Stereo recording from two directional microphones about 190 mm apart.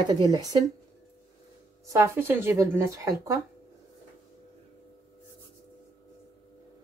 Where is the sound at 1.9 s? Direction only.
10° right (ahead or behind).